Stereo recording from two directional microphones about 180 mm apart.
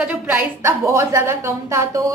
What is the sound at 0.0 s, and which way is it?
A woman's voice, 5° right (ahead or behind).